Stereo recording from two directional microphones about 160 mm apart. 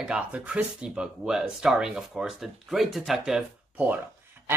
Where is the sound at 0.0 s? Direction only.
5° right (ahead or behind).